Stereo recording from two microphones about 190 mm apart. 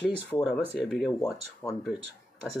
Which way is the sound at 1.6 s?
15° left (ahead or behind).